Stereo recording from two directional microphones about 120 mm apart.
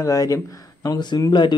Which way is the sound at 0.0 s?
25° left (ahead or behind).